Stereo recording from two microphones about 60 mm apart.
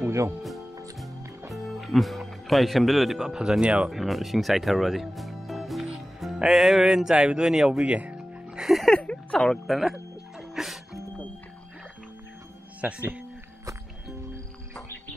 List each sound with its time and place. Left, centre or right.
1.5 s speech: centre
3.9 s speech: centre
7.8 s speech: right
8.2 s music: centre
8.6 s speech: centre
8.9 s speech: centre
9.4 s speech: centre
9.8 s music: centre
12.8 s speech: right